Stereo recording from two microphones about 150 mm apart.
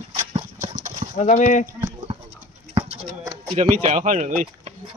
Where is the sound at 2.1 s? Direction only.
35° right (ahead or behind).